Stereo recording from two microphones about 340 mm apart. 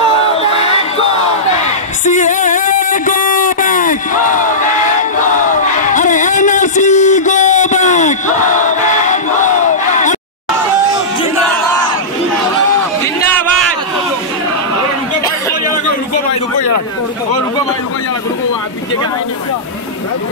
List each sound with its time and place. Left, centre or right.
0.2 s crowd: centre
2.0 s music: left